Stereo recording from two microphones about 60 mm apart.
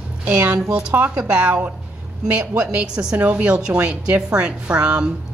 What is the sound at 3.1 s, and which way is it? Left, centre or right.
A woman's voice, right.